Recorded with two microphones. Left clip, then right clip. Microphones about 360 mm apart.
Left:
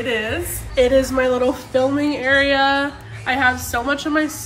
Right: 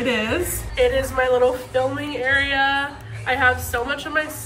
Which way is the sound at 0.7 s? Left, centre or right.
Centre.